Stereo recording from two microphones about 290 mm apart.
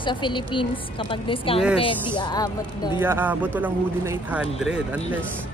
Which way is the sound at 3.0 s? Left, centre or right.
Centre.